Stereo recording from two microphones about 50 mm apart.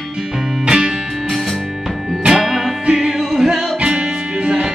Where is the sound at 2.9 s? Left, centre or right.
Centre.